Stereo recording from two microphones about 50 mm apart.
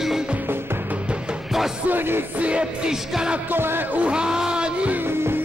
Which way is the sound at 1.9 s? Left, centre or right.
Right.